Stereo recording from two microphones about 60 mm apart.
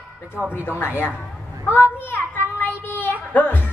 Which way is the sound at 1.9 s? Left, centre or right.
Left.